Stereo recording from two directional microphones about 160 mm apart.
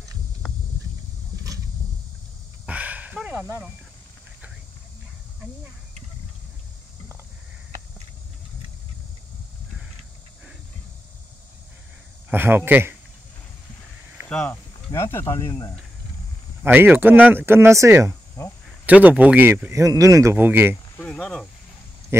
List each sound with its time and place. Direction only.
2.6 s a sound: 10° right (ahead or behind)
12.3 s speech: 10° right (ahead or behind)
14.3 s speech: 10° left (ahead or behind)
16.6 s speech: 10° right (ahead or behind)
18.4 s cricket: 15° left (ahead or behind)
18.9 s speech: 10° right (ahead or behind)
21.0 s cricket: 5° left (ahead or behind)